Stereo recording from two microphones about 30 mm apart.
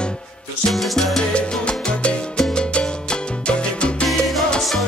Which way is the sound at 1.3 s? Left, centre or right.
Left.